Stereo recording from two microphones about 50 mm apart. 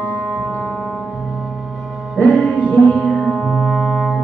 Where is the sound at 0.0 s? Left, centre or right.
Left.